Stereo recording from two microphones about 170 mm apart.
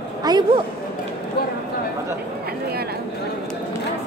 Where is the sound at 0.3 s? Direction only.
25° right (ahead or behind).